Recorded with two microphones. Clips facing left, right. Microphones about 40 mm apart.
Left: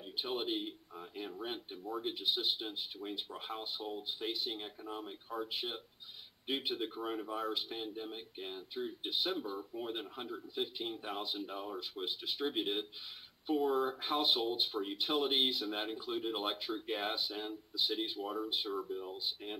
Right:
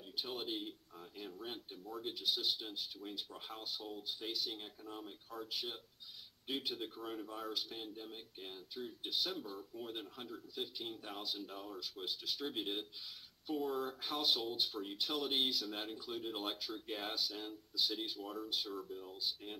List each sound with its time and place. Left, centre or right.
0.1 s speech: left